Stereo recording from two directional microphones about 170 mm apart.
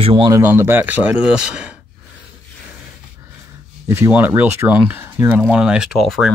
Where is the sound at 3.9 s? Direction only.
10° right (ahead or behind).